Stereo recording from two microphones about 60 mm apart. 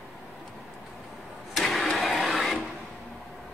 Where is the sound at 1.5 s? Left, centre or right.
Centre.